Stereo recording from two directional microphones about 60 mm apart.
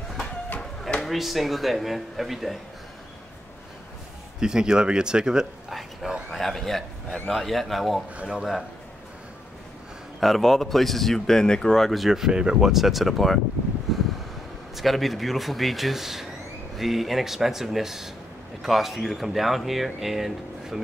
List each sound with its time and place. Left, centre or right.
0.6 s chop: centre
1.0 s speech: centre
4.4 s speech: centre
5.7 s a sound: centre
6.3 s speech: centre
8.2 s speech: centre
10.2 s speech: centre
13.9 s a sound: centre
14.8 s speech: centre